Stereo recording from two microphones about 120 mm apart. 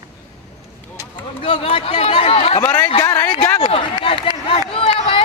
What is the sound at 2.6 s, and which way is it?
Speech, 30° left (ahead or behind).